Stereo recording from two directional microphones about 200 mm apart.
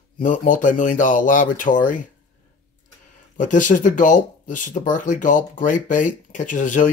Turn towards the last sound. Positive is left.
turn(degrees=40)  # may be behind; listen again after turning